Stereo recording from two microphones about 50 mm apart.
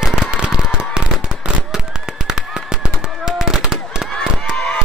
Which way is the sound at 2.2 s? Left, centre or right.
Centre.